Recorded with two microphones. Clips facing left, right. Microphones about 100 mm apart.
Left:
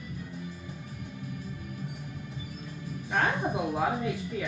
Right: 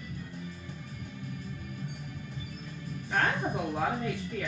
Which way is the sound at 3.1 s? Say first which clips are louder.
Left 1 dB; 5° left (ahead or behind).